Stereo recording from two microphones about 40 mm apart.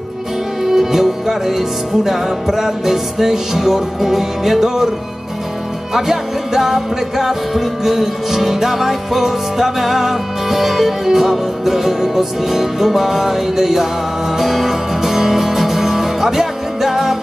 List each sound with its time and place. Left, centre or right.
0.7 s music: centre
5.9 s music: centre